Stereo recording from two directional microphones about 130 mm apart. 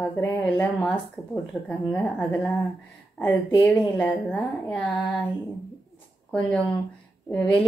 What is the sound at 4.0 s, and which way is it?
A woman's voice, 10° left (ahead or behind).